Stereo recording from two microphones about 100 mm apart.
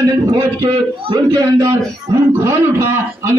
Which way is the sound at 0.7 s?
55° right (ahead or behind).